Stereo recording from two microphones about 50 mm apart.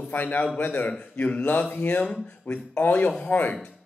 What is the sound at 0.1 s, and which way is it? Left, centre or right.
A man's voice, left.